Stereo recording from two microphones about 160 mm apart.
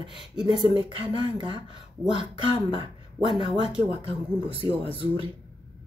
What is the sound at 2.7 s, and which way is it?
Speech, 35° right (ahead or behind).